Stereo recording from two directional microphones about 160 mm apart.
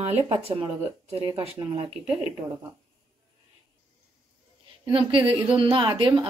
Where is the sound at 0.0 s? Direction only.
40° right (ahead or behind).